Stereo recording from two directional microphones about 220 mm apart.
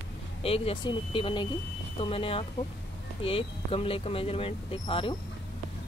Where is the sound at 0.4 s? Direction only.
25° left (ahead or behind).